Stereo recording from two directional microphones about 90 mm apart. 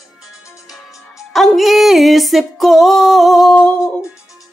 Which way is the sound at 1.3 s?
Centre (ahead or behind).